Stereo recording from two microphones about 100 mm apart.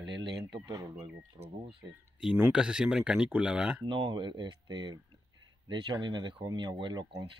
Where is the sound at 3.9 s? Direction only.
50° right (ahead or behind).